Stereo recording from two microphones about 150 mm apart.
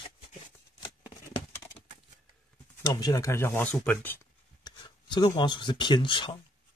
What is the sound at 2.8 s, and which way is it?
Speech, 25° left (ahead or behind).